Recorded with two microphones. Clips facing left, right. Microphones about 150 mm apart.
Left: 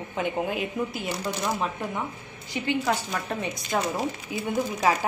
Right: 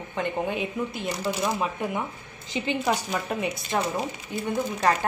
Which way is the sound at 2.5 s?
20° right (ahead or behind).